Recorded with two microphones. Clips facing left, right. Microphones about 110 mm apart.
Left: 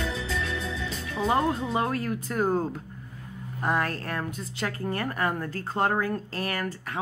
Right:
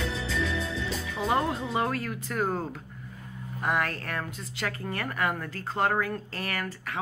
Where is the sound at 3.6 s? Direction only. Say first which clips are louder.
Left 1 dB; 30° left (ahead or behind).